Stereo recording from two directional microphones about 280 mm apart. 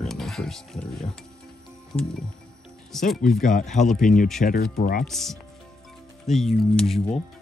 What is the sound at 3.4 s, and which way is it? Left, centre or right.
Speech, left.